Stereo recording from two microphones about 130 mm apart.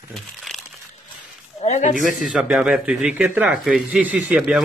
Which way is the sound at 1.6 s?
65° left (ahead or behind).